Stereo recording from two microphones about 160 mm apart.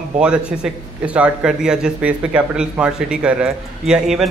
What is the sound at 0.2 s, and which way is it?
Speech, 5° right (ahead or behind).